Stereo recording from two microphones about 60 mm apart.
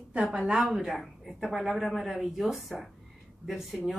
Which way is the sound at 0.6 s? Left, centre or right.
Centre.